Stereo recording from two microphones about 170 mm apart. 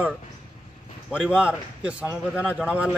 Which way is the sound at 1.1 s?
5° right (ahead or behind).